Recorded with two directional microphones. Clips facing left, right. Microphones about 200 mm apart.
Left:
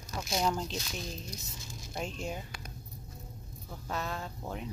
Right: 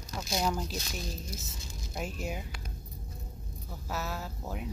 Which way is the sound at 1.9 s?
5° right (ahead or behind).